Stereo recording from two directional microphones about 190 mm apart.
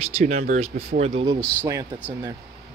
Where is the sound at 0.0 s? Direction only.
45° right (ahead or behind).